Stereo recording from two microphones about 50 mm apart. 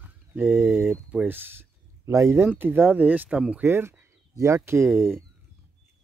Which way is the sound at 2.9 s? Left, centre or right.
Right.